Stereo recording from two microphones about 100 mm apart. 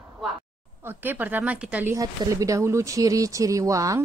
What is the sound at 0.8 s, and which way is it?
Speech, 20° right (ahead or behind).